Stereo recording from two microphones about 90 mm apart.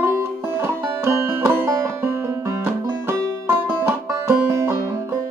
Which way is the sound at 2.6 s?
25° right (ahead or behind).